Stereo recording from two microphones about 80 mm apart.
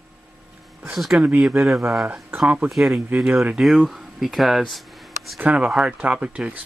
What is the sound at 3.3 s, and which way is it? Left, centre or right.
Speech, centre.